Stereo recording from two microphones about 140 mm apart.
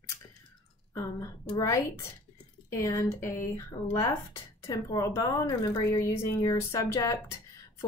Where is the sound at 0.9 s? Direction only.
20° left (ahead or behind).